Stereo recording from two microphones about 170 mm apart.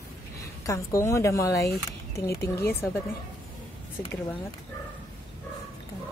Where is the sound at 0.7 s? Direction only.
15° left (ahead or behind).